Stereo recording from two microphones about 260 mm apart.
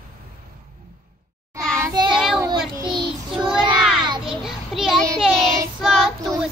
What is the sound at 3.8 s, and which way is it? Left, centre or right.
Child singing, centre.